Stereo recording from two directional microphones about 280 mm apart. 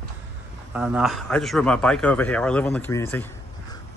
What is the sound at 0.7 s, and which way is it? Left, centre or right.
A man's voice, centre.